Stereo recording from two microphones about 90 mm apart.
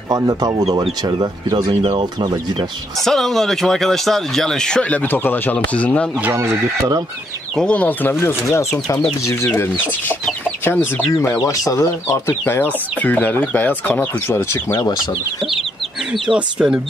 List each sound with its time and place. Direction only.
0.1 s speech: 40° right (ahead or behind)
1.8 s speech: 70° right (ahead or behind)
3.0 s speech: 5° left (ahead or behind)
7.5 s speech: 10° left (ahead or behind); by 9.5 s 35° left (ahead or behind)
9.6 s speech: 20° left (ahead or behind)
11.3 s speech: 40° left (ahead or behind)
16.1 s speech: 10° right (ahead or behind)